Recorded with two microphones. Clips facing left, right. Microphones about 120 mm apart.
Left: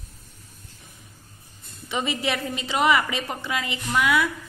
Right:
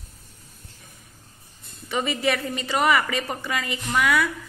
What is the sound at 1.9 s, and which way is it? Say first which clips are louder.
A woman's voice: right 2 dB; centre (ahead or behind).